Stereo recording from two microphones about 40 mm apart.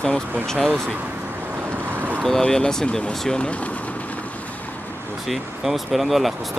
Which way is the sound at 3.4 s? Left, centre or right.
Left.